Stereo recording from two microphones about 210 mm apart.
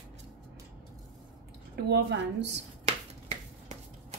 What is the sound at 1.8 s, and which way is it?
Speech, 55° right (ahead or behind).